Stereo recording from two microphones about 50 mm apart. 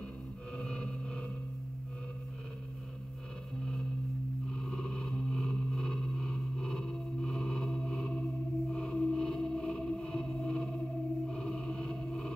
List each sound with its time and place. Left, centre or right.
0.6 s music: centre
4.5 s a sound: centre
11.2 s music: centre